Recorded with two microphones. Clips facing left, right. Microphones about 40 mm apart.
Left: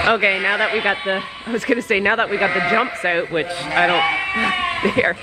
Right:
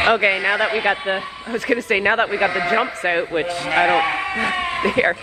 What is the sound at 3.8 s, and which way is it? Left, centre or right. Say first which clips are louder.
Speech: left 1 dB; left.